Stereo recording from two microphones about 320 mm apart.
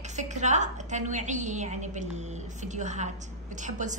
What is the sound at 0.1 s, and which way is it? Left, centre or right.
A woman's voice, right.